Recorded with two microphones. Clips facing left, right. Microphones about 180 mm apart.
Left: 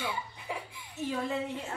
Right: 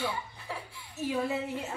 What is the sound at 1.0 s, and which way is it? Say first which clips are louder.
Speech: right 2 dB; 10° right (ahead or behind).